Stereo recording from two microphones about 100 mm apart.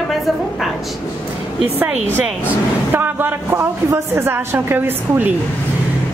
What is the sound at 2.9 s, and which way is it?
A woman's voice, 20° right (ahead or behind).